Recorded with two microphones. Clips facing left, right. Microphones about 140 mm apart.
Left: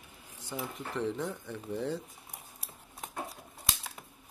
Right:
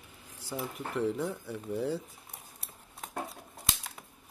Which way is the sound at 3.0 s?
Centre (ahead or behind).